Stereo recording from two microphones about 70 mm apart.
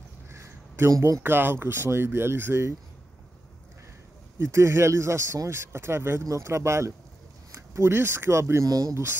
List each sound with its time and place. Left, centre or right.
0.3 s a sound: right
0.9 s speech: right
1.2 s speech: right
4.4 s speech: right
8.6 s speech: right
8.9 s speech: right